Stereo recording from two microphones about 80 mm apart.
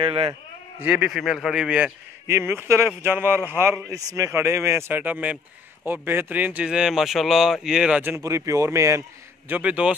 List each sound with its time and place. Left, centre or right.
0.7 s speech: centre
1.1 s speech: centre
2.2 s a man's voice: right
3.9 s speech: right; by 8.0 s centre
8.2 s speech: right
9.5 s speech: centre